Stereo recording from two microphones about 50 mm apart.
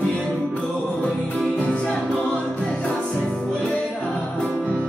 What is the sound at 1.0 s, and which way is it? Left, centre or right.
Music, left.